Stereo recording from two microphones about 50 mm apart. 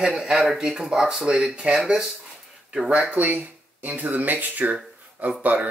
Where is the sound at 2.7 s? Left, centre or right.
Right.